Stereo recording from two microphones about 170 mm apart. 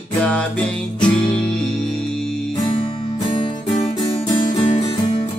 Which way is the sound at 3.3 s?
30° left (ahead or behind).